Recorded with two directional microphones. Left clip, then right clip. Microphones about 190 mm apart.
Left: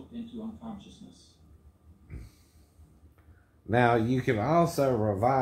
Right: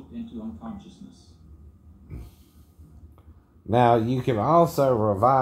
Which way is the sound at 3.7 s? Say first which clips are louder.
Right 5 dB; 15° right (ahead or behind).